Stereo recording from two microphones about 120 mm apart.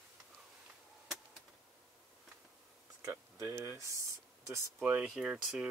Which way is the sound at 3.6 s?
20° right (ahead or behind).